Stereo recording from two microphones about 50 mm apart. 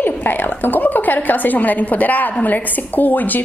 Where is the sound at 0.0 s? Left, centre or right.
Left.